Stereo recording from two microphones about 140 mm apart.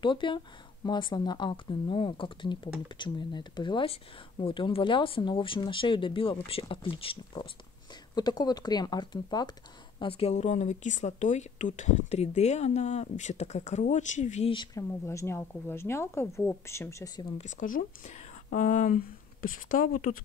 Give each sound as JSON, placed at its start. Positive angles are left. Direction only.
{"t": 0.0, "sound": "a woman's voice", "side_deg": 35}
{"t": 9.9, "sound": "speech", "side_deg": 40}
{"t": 14.5, "sound": "a woman's voice", "side_deg": 30}
{"t": 17.4, "sound": "speech", "side_deg": 70}